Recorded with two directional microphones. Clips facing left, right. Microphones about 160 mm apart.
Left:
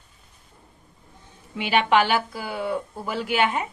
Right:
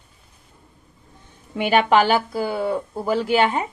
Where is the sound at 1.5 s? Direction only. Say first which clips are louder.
Right 3 dB; 45° right (ahead or behind).